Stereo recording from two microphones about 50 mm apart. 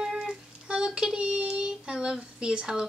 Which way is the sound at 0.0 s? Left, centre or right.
Centre.